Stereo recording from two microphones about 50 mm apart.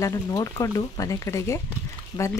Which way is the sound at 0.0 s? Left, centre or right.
Left.